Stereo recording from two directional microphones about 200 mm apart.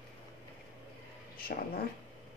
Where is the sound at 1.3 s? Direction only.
50° left (ahead or behind).